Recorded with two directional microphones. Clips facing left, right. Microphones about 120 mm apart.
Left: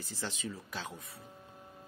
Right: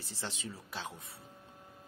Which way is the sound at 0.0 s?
30° right (ahead or behind).